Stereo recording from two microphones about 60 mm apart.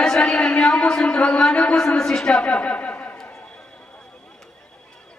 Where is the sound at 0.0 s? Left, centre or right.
Centre.